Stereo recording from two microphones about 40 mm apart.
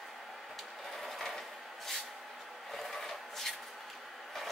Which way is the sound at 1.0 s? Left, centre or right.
Centre.